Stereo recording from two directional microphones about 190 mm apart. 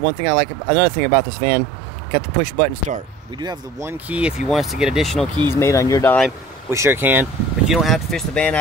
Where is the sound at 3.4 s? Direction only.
20° right (ahead or behind); by 5.3 s centre (ahead or behind).